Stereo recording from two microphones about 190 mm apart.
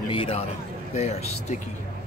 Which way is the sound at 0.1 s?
30° left (ahead or behind).